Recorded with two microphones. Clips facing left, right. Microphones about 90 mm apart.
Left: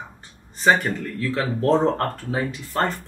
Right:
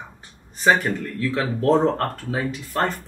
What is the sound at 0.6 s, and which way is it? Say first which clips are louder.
Speech: even; centre (ahead or behind).